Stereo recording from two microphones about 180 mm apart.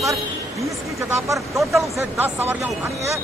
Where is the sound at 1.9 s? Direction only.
10° right (ahead or behind).